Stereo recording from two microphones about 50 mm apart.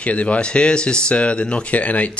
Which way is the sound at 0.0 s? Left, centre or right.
Left.